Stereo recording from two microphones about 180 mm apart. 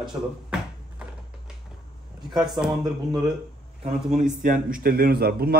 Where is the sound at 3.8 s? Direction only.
40° right (ahead or behind); by 5.6 s 60° right (ahead or behind).